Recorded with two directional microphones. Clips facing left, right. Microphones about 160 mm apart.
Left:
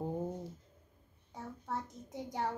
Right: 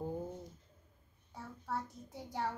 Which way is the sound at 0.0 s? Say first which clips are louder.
Left 3 dB; 20° left (ahead or behind).